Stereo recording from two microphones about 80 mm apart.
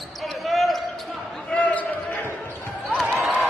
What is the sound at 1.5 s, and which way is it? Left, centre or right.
Basketball bounce, centre.